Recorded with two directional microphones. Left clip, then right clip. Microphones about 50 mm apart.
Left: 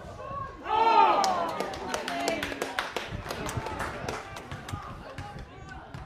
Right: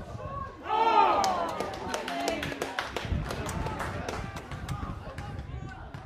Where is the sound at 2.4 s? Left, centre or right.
Left.